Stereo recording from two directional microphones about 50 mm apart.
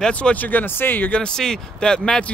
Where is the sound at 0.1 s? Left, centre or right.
Left.